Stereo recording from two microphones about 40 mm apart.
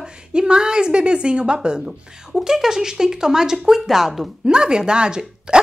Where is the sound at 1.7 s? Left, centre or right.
Centre.